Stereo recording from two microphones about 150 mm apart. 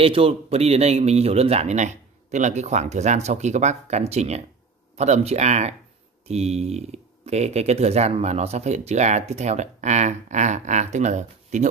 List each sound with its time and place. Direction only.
0.0 s speech: 40° right (ahead or behind)